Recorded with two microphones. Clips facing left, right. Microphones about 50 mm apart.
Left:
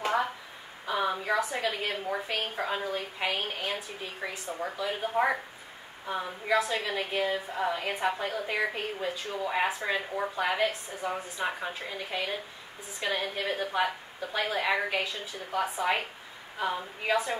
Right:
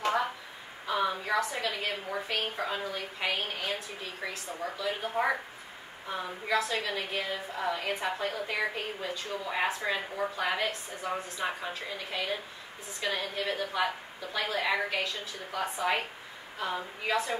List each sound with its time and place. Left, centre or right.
0.8 s a woman's voice: centre